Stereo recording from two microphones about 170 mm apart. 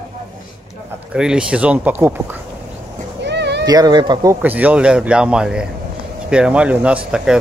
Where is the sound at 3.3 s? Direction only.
90° right.